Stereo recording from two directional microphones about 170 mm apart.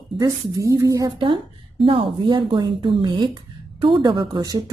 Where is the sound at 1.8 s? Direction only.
30° right (ahead or behind).